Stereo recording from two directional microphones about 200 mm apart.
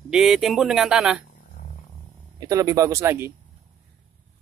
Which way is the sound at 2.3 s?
15° right (ahead or behind).